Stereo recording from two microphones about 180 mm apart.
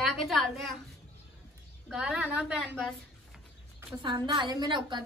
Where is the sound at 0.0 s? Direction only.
Centre (ahead or behind).